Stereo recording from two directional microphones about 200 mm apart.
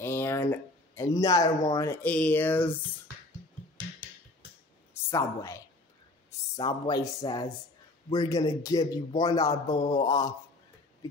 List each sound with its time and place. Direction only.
0.0 s speech: 10° left (ahead or behind)
4.9 s a man's voice: 15° left (ahead or behind)